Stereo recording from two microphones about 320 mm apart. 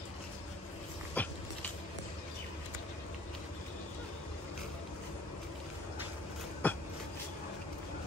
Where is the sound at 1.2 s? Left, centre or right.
Centre.